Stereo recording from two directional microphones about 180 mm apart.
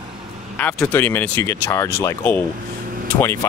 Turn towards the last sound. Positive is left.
turn(degrees=10)  # may be behind; listen again after turning